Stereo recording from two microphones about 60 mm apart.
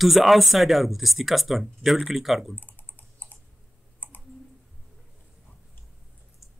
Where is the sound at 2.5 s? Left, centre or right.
Left.